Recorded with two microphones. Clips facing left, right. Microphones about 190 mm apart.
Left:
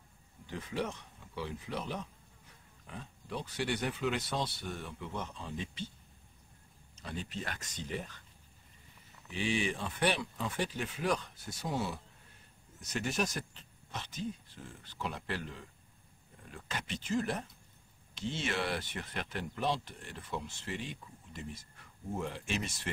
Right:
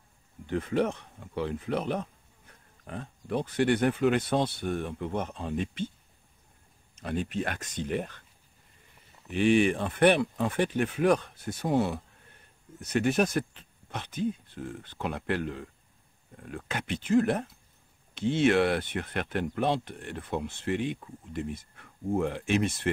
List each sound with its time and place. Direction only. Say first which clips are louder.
0.5 s speech: right 10 dB; 60° right (ahead or behind)
7.0 s speech: right 10 dB; 55° right (ahead or behind)
9.3 s speech: right 11 dB; 60° right (ahead or behind)